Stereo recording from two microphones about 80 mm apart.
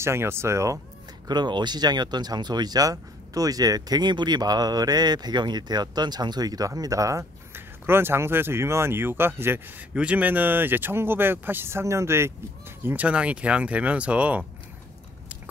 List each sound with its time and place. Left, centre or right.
0.0 s speech: right
1.2 s speech: right
7.5 s speech: right
9.9 s speech: centre; by 12.3 s right
12.8 s speech: centre